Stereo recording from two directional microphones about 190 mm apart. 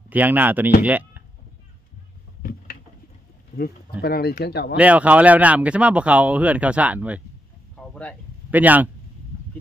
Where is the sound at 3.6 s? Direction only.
50° left (ahead or behind).